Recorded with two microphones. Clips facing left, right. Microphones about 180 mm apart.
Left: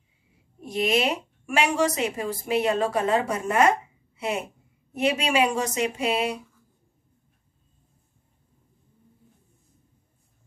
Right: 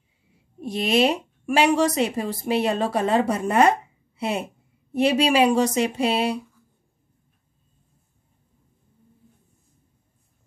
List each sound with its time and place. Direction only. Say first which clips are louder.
0.6 s a woman's voice: right 3 dB; 30° right (ahead or behind)
4.9 s a woman's voice: right 4 dB; 35° right (ahead or behind)